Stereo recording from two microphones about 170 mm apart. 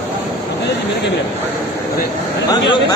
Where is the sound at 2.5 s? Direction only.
25° left (ahead or behind).